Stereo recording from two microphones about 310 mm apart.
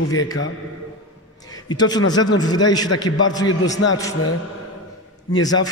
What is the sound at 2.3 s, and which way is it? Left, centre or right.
A man's voice, centre.